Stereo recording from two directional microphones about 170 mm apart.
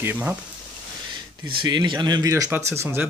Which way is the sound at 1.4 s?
30° right (ahead or behind).